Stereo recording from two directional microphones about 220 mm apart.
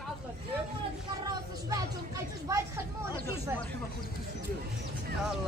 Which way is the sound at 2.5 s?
15° right (ahead or behind).